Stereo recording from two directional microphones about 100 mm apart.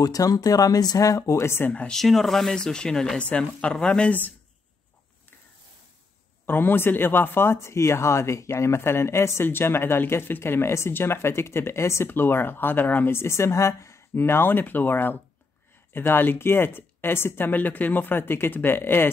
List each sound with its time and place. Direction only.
0.0 s speech: 35° left (ahead or behind); by 2.0 s 15° left (ahead or behind)
2.0 s speech: centre (ahead or behind)
6.4 s speech: 20° left (ahead or behind)